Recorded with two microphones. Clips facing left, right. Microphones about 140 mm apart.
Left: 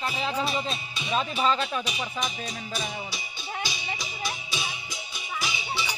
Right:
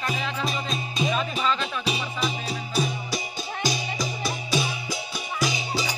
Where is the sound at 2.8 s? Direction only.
40° right (ahead or behind).